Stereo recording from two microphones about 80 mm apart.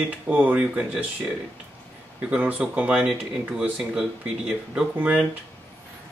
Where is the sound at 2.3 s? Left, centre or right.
Centre.